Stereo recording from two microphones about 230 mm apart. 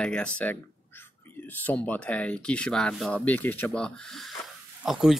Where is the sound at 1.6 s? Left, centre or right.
Centre.